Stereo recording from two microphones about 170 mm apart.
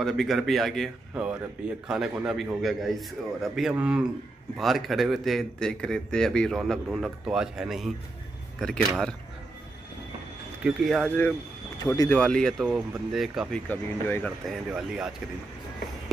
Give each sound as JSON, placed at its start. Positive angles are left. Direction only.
{"t": 0.0, "sound": "a man's voice", "side_deg": 0}
{"t": 10.6, "sound": "speech", "side_deg": 0}
{"t": 11.8, "sound": "speech", "side_deg": 20}
{"t": 12.1, "sound": "speech", "side_deg": 5}
{"t": 13.7, "sound": "speech", "side_deg": 10}
{"t": 14.4, "sound": "speech", "side_deg": 0}